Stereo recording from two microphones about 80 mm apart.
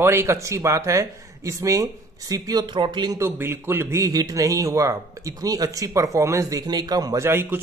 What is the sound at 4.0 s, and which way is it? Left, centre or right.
A man's voice, right.